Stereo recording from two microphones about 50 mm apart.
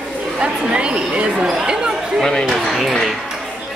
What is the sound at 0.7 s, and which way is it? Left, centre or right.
Speech, right.